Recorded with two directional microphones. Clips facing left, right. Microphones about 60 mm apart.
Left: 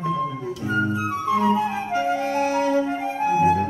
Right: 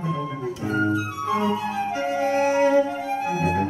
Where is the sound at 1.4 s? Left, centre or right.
Left.